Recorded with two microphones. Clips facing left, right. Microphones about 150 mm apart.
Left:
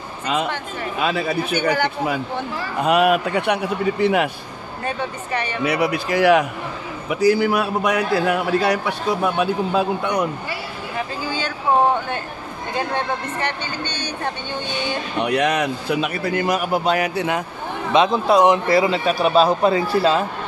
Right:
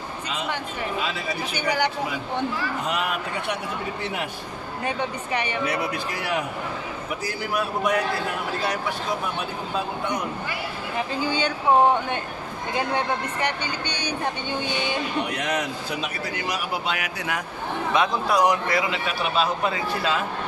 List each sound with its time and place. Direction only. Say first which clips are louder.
1.0 s speech: left 8 dB; 60° left (ahead or behind)
2.8 s a man's voice: left 16 dB; 65° left (ahead or behind)
4.8 s speech: left 2 dB; 15° right (ahead or behind)
5.7 s a man's voice: left 7 dB; 75° left (ahead or behind)
7.1 s a man's voice: left 14 dB; 75° left (ahead or behind)
13.4 s speech: left 1 dB; 15° right (ahead or behind)
15.2 s a man's voice: left 8 dB; 70° left (ahead or behind); by 20.2 s 35° left (ahead or behind)